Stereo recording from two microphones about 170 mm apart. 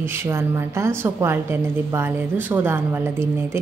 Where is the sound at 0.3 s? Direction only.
15° right (ahead or behind).